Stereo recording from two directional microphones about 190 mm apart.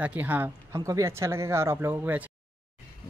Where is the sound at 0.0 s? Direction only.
10° right (ahead or behind).